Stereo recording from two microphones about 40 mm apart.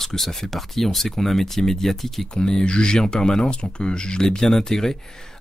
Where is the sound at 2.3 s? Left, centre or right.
Left.